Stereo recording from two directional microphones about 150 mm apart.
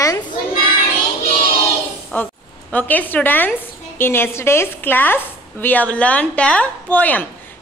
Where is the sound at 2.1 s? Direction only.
10° left (ahead or behind).